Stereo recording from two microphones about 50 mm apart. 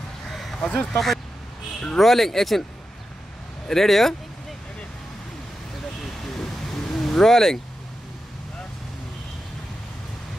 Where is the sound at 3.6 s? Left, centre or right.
Centre.